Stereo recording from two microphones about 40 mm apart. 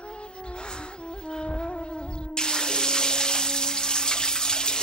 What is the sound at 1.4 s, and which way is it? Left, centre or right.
Wind instrument, left.